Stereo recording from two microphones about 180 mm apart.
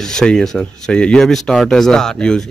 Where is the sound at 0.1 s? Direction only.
5° left (ahead or behind).